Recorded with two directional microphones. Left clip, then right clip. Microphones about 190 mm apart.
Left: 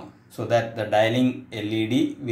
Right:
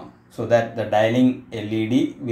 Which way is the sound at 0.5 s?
Centre (ahead or behind).